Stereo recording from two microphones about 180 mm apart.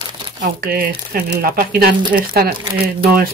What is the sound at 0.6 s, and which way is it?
Speech, 55° right (ahead or behind).